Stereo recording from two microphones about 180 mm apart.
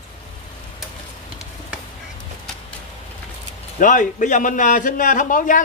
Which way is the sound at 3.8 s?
45° left (ahead or behind).